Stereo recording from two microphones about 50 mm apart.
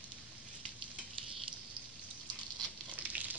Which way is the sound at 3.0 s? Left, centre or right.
Right.